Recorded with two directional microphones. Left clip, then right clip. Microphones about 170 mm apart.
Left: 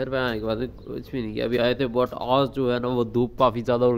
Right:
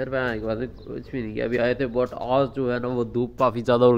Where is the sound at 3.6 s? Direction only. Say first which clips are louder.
Right 3 dB; 10° right (ahead or behind).